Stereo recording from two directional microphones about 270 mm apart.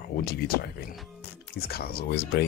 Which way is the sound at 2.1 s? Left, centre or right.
Left.